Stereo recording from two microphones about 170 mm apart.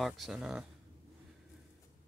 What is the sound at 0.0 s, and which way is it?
Speech, centre (ahead or behind).